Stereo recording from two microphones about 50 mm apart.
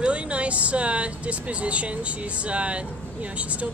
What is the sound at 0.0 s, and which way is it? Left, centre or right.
Speech, right.